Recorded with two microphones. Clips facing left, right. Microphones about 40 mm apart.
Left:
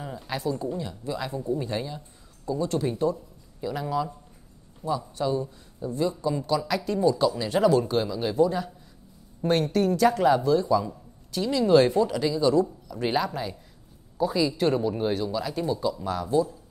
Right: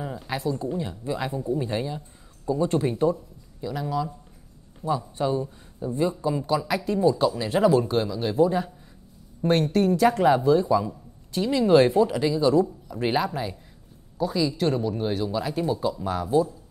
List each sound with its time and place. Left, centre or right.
0.0 s speech: centre
0.7 s speech: centre
1.4 s speech: centre; by 2.9 s right
3.6 s speech: centre
4.8 s speech: right; by 8.4 s centre
8.4 s speech: centre
14.1 s speech: centre
15.3 s speech: centre